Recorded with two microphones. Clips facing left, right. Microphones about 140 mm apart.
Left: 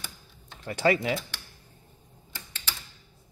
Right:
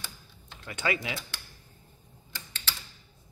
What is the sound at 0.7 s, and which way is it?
Speech, 35° left (ahead or behind).